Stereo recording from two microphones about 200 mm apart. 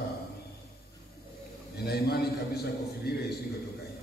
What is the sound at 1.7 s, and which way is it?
A man's voice, 55° left (ahead or behind).